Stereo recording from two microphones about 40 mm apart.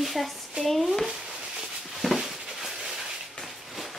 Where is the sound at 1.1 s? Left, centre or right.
Centre.